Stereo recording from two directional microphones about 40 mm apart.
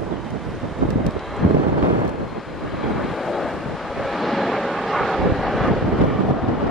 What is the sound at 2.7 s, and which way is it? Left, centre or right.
Vehicle, centre.